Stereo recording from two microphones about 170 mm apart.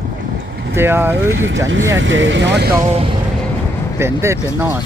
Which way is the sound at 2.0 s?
90° right.